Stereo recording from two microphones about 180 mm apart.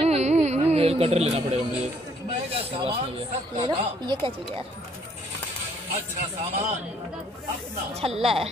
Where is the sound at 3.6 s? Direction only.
25° right (ahead or behind).